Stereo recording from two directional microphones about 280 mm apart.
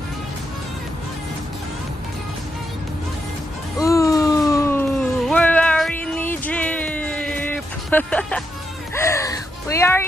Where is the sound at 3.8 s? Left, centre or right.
Centre.